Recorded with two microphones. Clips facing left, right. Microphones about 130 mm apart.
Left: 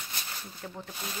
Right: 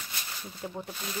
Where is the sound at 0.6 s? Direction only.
15° right (ahead or behind).